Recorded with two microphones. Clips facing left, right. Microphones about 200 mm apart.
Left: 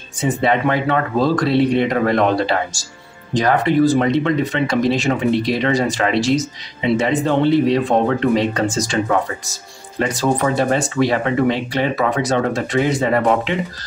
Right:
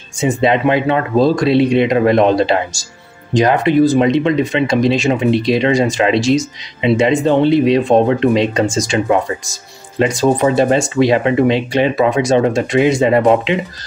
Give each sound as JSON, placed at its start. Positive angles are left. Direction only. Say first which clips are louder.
{"t": 0.3, "sound": "speech", "louder": "right 4 dB", "side_deg": -20}
{"t": 9.9, "sound": "speech", "louder": "right 5 dB", "side_deg": -20}